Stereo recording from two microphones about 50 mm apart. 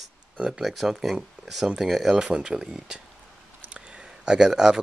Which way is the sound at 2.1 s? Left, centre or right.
Centre.